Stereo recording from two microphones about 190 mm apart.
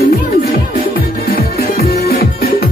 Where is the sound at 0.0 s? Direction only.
55° left (ahead or behind).